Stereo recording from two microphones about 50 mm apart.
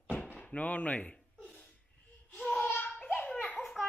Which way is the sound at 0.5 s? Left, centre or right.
Left.